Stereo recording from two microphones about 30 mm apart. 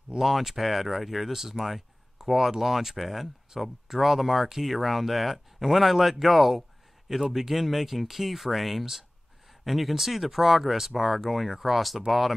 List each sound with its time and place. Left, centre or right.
0.2 s speech: centre
7.2 s speech: centre